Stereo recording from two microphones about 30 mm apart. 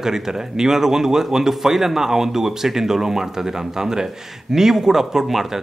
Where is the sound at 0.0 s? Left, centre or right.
Centre.